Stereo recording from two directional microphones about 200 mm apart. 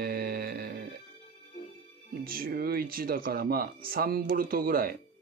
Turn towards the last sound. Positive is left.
turn(degrees=-45)  # may be behind; listen again after turning